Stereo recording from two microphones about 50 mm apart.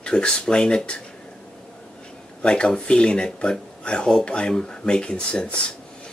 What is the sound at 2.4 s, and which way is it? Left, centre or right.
Speech, centre.